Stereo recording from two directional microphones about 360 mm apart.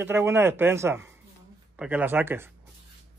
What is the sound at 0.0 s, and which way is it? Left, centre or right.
Speech, centre.